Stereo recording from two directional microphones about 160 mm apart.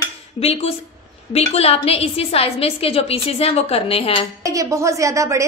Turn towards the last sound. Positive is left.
turn(degrees=-20)  # may be behind; listen again after turning